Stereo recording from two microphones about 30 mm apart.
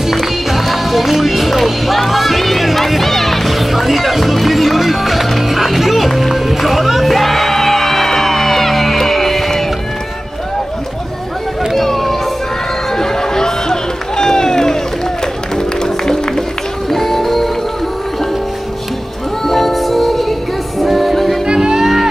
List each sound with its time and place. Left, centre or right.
0.5 s music: centre
11.7 s a sound: centre
12.9 s music: centre
16.9 s music: centre
19.4 s music: centre